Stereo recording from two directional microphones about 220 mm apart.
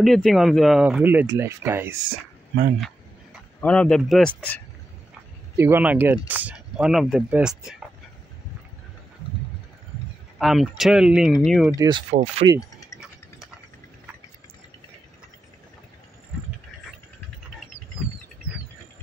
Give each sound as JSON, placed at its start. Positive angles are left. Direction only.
{"t": 0.0, "sound": "speech", "side_deg": 0}
{"t": 3.6, "sound": "speech", "side_deg": 5}
{"t": 5.6, "sound": "speech", "side_deg": -10}
{"t": 10.4, "sound": "speech", "side_deg": 0}
{"t": 11.7, "sound": "speech", "side_deg": -15}
{"t": 12.1, "sound": "speech", "side_deg": -30}
{"t": 12.5, "sound": "a sound", "side_deg": 15}